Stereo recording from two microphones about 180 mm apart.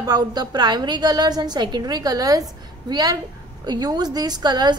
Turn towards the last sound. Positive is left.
turn(degrees=-25)  # may be behind; listen again after turning